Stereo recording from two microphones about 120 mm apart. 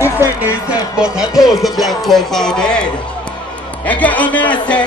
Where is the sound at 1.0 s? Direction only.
5° right (ahead or behind); by 4.5 s 15° left (ahead or behind).